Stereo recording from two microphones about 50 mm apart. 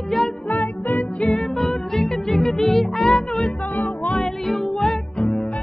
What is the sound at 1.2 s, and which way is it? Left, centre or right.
Music, centre.